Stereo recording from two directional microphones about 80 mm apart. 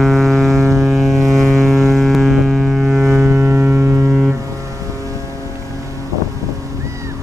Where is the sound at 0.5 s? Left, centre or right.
Right.